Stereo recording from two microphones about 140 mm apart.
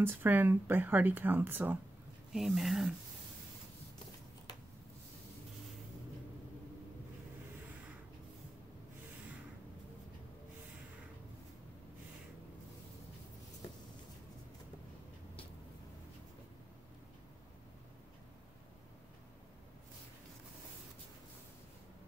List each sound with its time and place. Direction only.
0.0 s speech: 15° right (ahead or behind)
2.3 s speech: centre (ahead or behind)